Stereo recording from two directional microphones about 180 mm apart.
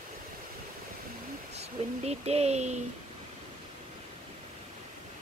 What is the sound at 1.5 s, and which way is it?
Speech, 35° right (ahead or behind).